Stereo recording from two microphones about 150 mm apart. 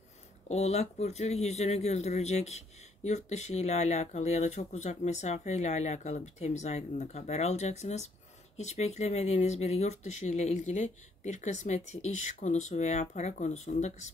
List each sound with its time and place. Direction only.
0.5 s speech: 45° left (ahead or behind)